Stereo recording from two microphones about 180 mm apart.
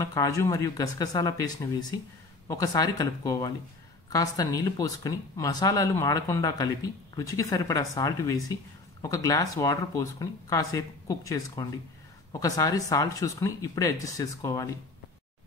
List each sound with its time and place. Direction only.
0.0 s speech: 20° left (ahead or behind)